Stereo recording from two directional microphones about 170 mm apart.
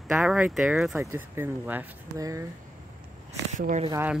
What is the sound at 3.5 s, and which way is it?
Speech, 45° right (ahead or behind).